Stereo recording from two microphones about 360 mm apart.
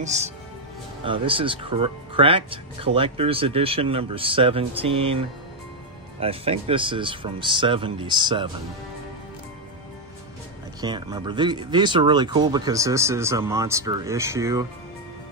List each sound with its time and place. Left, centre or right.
0.0 s speech: centre
10.8 s speech: centre